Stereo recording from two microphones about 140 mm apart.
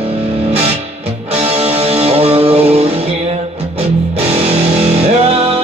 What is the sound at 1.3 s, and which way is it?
Music, 45° right (ahead or behind).